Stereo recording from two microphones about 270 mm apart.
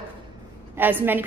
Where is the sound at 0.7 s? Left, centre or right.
Centre.